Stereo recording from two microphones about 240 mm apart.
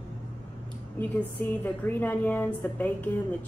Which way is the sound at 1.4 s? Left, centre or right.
Centre.